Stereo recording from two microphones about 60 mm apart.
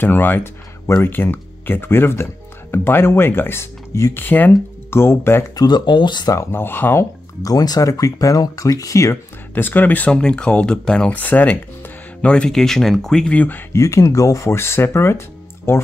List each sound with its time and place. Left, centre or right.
0.0 s speech: left
0.8 s speech: left
1.1 s speech: left
4.9 s speech: left
6.2 s speech: left
6.5 s speech: left
7.4 s speech: left
9.5 s speech: left; by 11.1 s centre
11.1 s speech: left
12.4 s speech: centre
13.3 s speech: left
13.7 s speech: left
14.5 s speech: left